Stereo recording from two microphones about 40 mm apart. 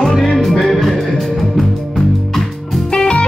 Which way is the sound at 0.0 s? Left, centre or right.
Centre.